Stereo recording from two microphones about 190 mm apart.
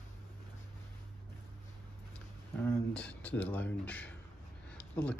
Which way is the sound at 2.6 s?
5° left (ahead or behind).